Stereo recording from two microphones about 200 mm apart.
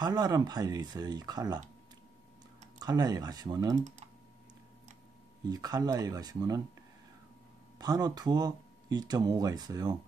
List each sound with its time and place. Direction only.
0.0 s speech: 20° right (ahead or behind)
2.8 s speech: 20° right (ahead or behind)
5.4 s speech: 20° right (ahead or behind)
7.8 s speech: 20° right (ahead or behind)